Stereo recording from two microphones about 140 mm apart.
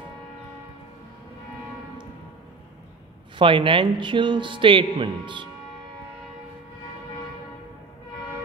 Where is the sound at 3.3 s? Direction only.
35° right (ahead or behind).